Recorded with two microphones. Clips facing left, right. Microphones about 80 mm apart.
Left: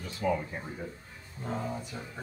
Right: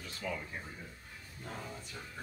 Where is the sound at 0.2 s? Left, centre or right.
Left.